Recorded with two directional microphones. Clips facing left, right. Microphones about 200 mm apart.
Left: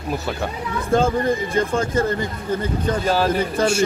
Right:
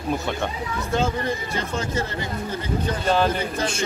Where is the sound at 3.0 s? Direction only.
5° left (ahead or behind).